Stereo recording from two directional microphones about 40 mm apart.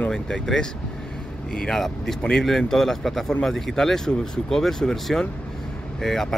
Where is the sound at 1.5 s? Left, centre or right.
Centre.